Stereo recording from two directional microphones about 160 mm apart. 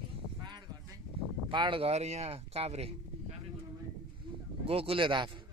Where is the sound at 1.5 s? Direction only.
30° right (ahead or behind).